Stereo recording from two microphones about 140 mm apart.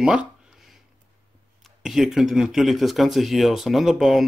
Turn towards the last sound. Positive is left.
turn(degrees=0)  # may be behind; listen again after turning